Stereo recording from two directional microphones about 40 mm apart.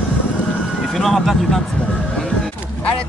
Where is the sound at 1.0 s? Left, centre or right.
Centre.